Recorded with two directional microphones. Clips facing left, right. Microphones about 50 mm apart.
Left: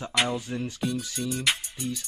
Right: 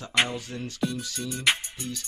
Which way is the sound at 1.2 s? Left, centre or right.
Right.